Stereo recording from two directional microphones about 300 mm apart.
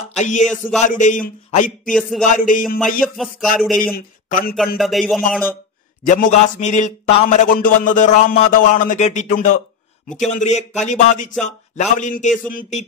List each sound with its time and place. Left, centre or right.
0.2 s a man's voice: left
0.5 s speech: centre
0.8 s a man's voice: left
1.9 s speech: centre
2.2 s a man's voice: left
3.0 s speech: centre
3.8 s a man's voice: left
4.7 s speech: centre
6.0 s a man's voice: left